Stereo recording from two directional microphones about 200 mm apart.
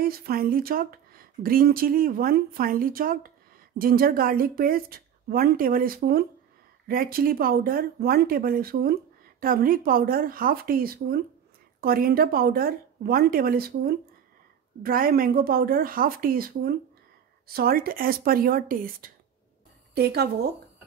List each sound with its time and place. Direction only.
0.0 s a woman's voice: 50° right (ahead or behind)